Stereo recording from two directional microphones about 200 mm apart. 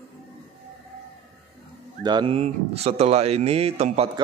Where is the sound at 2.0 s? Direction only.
25° right (ahead or behind).